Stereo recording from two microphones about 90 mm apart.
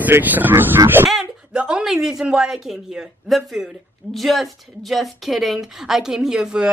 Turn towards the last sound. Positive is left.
turn(degrees=-10)  # may be behind; listen again after turning